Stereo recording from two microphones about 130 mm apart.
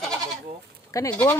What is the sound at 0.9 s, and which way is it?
Speech, 25° left (ahead or behind).